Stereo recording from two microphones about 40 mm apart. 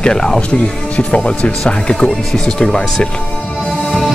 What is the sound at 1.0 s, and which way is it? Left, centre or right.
Speech, left.